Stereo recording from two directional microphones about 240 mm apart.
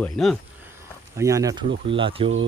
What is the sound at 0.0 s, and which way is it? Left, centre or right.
Speech, centre.